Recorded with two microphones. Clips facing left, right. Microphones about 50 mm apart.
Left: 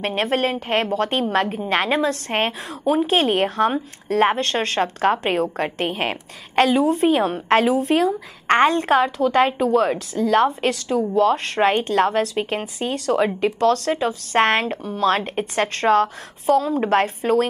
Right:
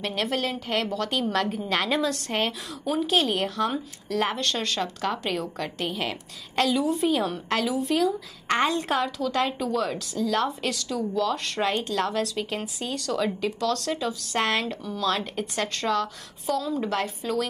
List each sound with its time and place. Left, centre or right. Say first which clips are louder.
0.0 s a woman's voice: left 6 dB; left